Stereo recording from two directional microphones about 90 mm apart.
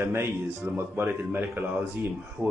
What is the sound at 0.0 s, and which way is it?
A man's voice, 30° right (ahead or behind).